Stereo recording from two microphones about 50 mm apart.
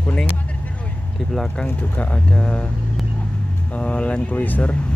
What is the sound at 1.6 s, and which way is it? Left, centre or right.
Speech, left.